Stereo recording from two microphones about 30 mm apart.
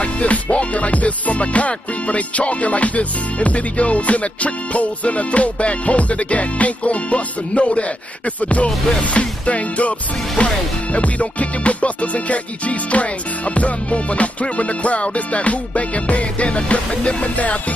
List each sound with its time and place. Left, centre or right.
0.0 s music: left